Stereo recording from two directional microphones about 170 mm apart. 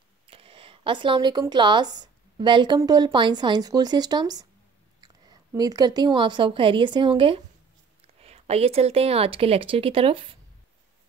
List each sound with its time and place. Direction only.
0.3 s a woman's voice: 35° right (ahead or behind)